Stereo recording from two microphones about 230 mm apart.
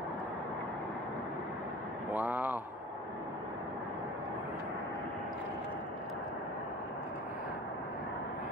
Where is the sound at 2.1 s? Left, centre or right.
Centre.